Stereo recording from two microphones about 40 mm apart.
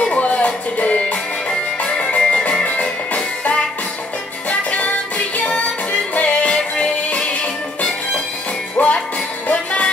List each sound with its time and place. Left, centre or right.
0.0 s music: left
8.7 s music: left